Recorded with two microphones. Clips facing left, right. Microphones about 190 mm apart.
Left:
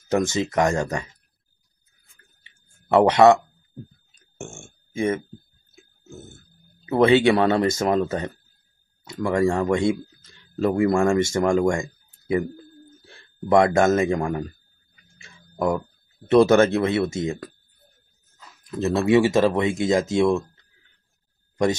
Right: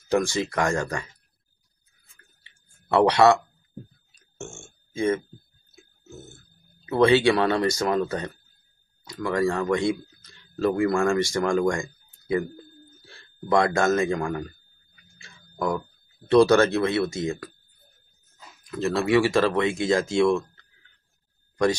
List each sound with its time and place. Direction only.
0.1 s speech: 20° left (ahead or behind)
2.9 s speech: 20° left (ahead or behind)
4.4 s speech: 20° left (ahead or behind)
6.9 s speech: 20° left (ahead or behind)
13.5 s speech: 20° left (ahead or behind)
15.1 s a sound: 20° left (ahead or behind)
16.3 s speech: 20° left (ahead or behind)
18.7 s speech: 20° left (ahead or behind)